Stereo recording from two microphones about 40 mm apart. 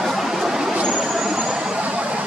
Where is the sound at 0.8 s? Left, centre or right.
Centre.